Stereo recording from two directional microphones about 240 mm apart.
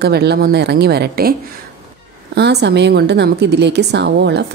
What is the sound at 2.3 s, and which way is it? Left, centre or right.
A woman's voice, right.